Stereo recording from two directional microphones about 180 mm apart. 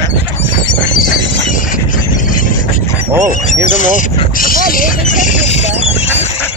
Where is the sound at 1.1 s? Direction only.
50° left (ahead or behind).